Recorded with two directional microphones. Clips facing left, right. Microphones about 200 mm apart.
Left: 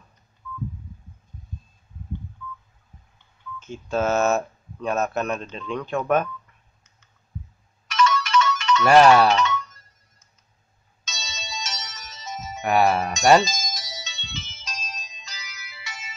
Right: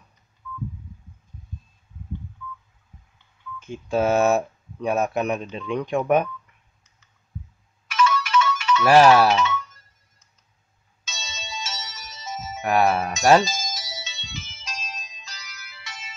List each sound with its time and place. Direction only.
2.0 s telephone dialing: 35° left (ahead or behind)
3.5 s speech: 15° right (ahead or behind)
7.9 s music: 5° right (ahead or behind)
11.1 s ringtone: 5° right (ahead or behind)